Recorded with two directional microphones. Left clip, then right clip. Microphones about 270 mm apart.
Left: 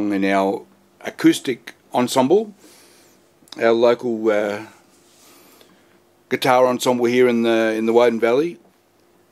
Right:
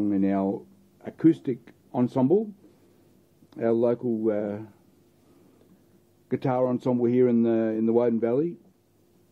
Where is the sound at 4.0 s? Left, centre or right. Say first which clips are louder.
Left 5 dB; left.